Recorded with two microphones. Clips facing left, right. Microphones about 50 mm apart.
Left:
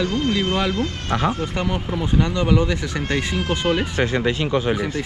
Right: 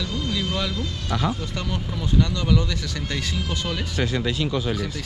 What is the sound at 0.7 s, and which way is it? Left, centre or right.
Speech, left.